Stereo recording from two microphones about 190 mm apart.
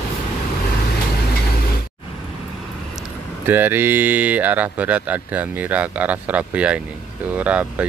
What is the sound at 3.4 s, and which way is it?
Speech, 10° right (ahead or behind).